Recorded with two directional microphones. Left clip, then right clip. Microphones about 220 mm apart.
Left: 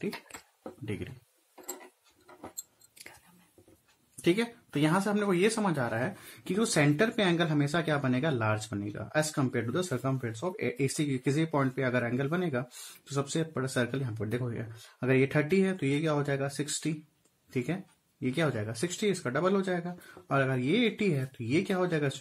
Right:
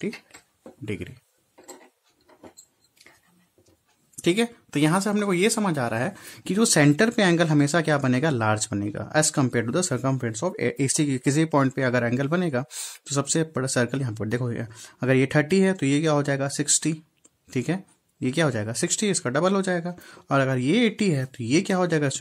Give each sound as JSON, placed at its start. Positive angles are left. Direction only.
{"t": 0.8, "sound": "speech", "side_deg": -35}
{"t": 4.2, "sound": "speech", "side_deg": -35}